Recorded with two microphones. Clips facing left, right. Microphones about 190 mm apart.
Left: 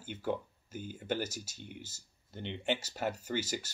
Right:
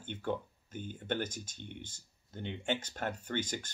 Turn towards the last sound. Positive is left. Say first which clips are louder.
# left 1 dB
turn(degrees=5)  # may be behind; listen again after turning